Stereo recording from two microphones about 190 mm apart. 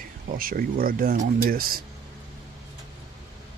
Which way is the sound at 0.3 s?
50° right (ahead or behind).